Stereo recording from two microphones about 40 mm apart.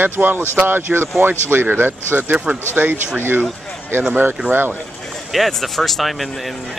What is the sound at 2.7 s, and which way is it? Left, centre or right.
Speech, right.